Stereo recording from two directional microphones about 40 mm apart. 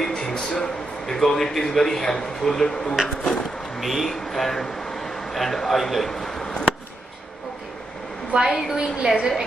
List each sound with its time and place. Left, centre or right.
0.0 s speech: centre
3.8 s speech: centre
8.5 s a woman's voice: centre
8.7 s a woman's voice: right